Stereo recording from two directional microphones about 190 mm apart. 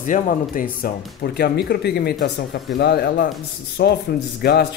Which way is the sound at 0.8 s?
60° left (ahead or behind).